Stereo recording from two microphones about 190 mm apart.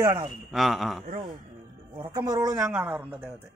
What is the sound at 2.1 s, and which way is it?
Speech, 20° right (ahead or behind).